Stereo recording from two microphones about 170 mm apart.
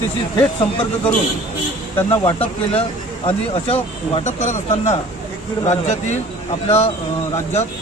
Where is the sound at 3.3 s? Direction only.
35° left (ahead or behind).